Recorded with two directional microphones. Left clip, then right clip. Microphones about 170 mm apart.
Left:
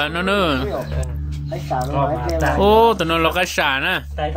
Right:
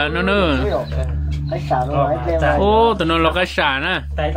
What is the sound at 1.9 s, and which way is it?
Speech, centre (ahead or behind).